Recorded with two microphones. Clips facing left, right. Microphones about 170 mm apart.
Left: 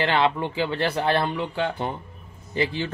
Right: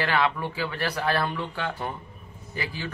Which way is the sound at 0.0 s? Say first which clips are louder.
Left 3 dB; 25° left (ahead or behind).